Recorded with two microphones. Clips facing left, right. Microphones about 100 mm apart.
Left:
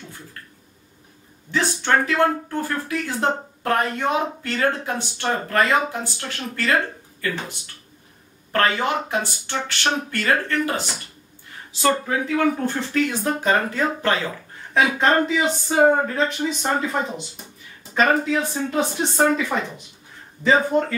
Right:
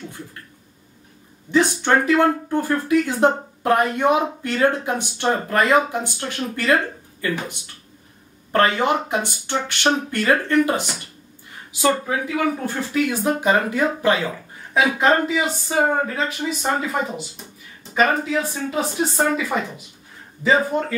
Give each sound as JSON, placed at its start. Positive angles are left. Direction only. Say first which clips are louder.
{"t": 1.5, "sound": "speech", "louder": "right 3 dB", "side_deg": -15}
{"t": 20.7, "sound": "speech", "louder": "left 3 dB", "side_deg": -5}